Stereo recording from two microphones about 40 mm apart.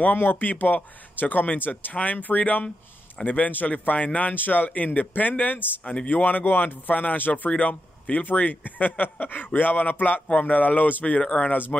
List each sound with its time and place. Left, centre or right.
0.0 s speech: left
5.9 s speech: left
11.1 s speech: left